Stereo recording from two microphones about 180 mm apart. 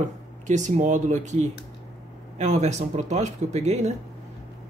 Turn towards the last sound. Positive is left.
turn(degrees=-40)  # may be behind; listen again after turning